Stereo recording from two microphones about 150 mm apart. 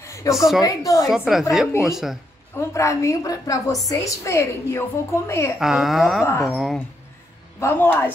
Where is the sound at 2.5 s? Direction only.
20° left (ahead or behind).